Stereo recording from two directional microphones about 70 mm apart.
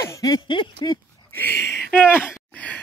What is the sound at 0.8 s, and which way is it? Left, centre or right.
Speech, left.